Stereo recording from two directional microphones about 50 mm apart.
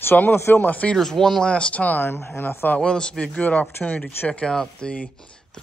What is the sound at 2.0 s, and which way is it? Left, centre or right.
Speech, left.